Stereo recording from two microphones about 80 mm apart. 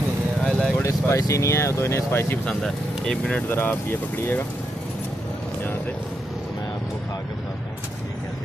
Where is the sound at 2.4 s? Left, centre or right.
Centre.